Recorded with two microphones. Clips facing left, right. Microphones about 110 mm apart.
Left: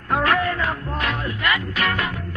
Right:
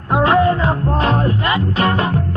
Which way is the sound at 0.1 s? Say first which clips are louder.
Right 7 dB; 25° right (ahead or behind).